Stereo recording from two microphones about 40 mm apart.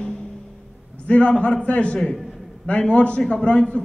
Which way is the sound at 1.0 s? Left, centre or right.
Left.